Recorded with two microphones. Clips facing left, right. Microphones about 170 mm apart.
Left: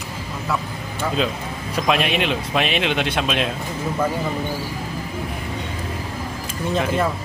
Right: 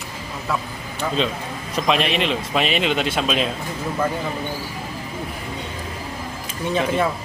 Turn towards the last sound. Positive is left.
turn(degrees=0)  # may be behind; listen again after turning